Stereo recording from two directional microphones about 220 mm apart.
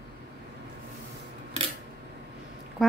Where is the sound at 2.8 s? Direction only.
Centre (ahead or behind).